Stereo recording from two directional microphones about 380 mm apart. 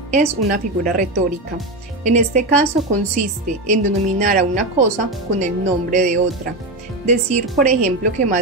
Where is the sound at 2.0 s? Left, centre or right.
Centre.